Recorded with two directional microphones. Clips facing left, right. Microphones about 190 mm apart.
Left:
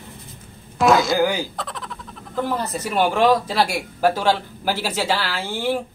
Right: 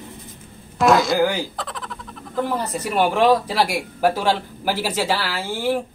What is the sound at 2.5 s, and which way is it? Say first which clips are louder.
Speech: even; 10° right (ahead or behind).